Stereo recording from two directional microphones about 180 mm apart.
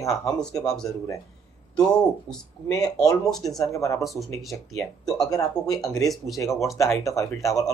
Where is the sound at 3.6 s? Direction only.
15° left (ahead or behind).